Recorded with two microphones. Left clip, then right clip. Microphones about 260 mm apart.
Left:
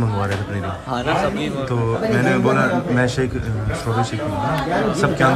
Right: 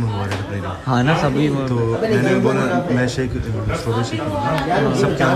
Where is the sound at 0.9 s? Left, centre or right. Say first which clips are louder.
Right 2 dB; right.